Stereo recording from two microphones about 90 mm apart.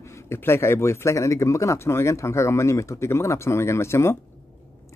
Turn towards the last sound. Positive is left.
turn(degrees=30)  # may be behind; listen again after turning